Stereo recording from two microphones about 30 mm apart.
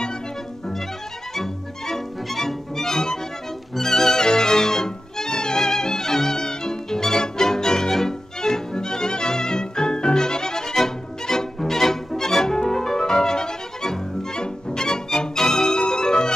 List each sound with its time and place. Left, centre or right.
1.3 s music: centre; by 16.3 s left